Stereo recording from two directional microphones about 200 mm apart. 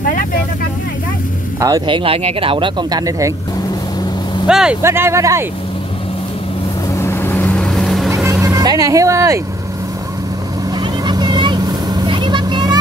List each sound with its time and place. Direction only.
0.0 s vehicle: 45° left (ahead or behind)
1.6 s speech: 20° right (ahead or behind)
4.5 s speech: 5° right (ahead or behind)
7.0 s vehicle: 10° left (ahead or behind)
8.3 s speech: 15° right (ahead or behind)
11.1 s vehicle: 20° right (ahead or behind)